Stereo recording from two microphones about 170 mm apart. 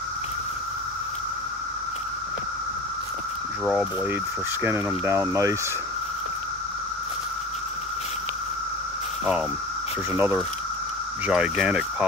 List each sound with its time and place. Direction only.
3.6 s speech: 5° right (ahead or behind)
4.6 s speech: 15° right (ahead or behind)
10.1 s speech: 10° right (ahead or behind)